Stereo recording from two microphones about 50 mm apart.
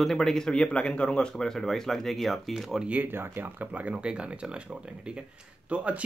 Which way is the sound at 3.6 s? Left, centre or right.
Right.